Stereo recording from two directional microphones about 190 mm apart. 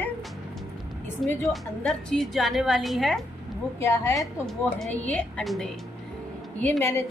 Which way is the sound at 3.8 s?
15° left (ahead or behind).